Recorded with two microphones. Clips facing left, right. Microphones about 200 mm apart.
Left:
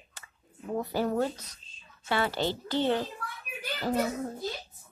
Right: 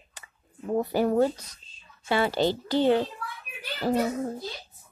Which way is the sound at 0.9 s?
15° right (ahead or behind).